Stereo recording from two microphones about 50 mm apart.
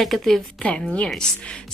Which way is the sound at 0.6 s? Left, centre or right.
Left.